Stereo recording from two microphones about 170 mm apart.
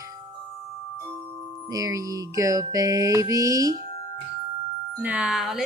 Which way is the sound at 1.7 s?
20° right (ahead or behind).